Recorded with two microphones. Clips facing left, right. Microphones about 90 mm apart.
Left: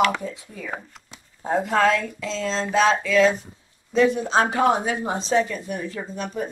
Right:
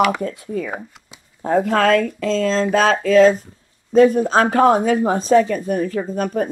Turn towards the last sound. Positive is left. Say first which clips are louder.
# right 8 dB
turn(degrees=-50)  # may be behind; listen again after turning